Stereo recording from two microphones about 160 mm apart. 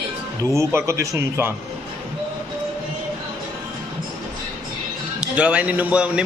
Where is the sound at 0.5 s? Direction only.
20° right (ahead or behind).